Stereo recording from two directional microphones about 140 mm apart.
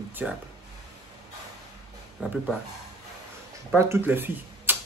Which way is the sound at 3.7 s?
15° right (ahead or behind).